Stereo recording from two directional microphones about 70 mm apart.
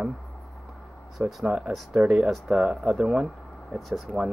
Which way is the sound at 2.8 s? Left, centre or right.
Centre.